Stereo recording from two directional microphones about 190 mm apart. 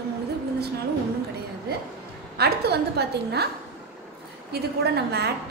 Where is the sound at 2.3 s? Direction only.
60° right (ahead or behind).